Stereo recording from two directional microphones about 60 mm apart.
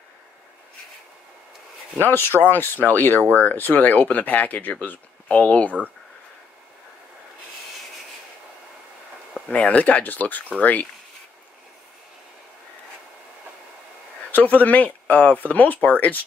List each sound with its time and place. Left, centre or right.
2.0 s speech: left; by 5.7 s centre
9.5 s speech: centre
14.3 s speech: left